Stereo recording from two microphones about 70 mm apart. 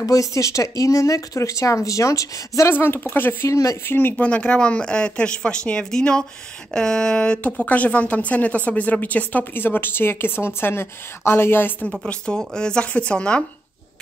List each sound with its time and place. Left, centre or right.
0.0 s speech: left
2.7 s speech: left
3.4 s speech: left
3.8 s speech: left
4.2 s a woman's voice: centre
11.9 s a woman's voice: centre